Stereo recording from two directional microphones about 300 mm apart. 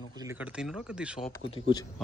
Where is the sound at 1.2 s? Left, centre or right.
Centre.